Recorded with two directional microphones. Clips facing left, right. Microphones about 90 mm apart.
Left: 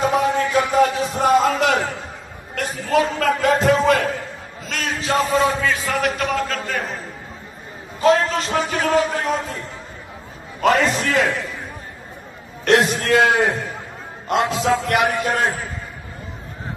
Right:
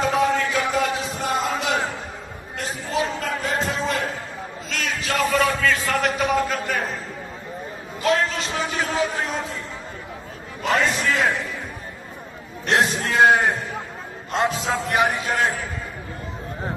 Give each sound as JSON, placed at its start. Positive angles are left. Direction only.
{"t": 0.0, "sound": "a sound", "side_deg": 15}
{"t": 0.5, "sound": "a sound", "side_deg": 55}
{"t": 3.2, "sound": "music", "side_deg": 65}
{"t": 4.6, "sound": "a man's voice", "side_deg": 35}
{"t": 5.9, "sound": "a man's voice", "side_deg": 0}
{"t": 6.3, "sound": "a man's voice", "side_deg": -10}
{"t": 8.0, "sound": "a man's voice", "side_deg": 40}
{"t": 10.9, "sound": "a man's voice", "side_deg": 45}
{"t": 12.6, "sound": "a man's voice", "side_deg": 80}
{"t": 15.1, "sound": "a man's voice", "side_deg": 55}